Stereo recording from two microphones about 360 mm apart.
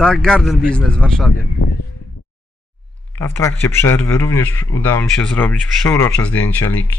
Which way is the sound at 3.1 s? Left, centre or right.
Centre.